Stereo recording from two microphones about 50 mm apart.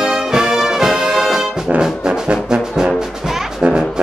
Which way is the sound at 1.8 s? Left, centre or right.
Centre.